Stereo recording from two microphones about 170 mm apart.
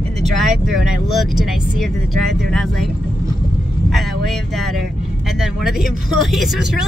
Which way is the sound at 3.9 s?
Centre (ahead or behind).